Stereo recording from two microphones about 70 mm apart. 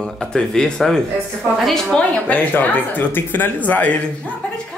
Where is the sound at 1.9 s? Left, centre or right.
Left.